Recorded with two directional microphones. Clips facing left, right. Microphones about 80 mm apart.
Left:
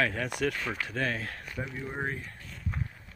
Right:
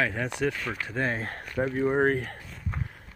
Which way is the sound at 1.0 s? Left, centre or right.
Right.